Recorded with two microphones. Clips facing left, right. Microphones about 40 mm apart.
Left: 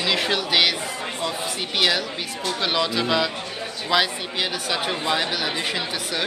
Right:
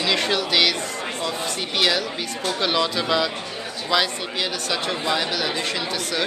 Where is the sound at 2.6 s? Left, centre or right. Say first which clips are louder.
Even; centre.